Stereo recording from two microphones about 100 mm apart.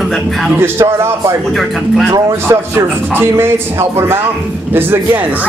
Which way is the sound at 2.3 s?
25° right (ahead or behind).